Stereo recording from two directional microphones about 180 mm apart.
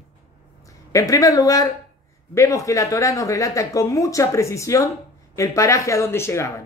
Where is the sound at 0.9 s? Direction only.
20° left (ahead or behind).